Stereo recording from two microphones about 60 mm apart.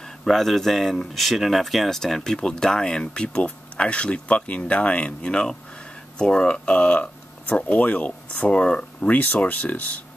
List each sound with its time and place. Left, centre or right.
0.2 s speech: centre; by 10.0 s left